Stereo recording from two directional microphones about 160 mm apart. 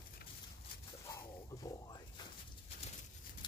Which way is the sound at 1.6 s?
25° left (ahead or behind).